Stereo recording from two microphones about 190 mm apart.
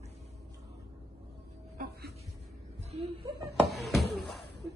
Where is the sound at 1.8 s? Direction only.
55° right (ahead or behind).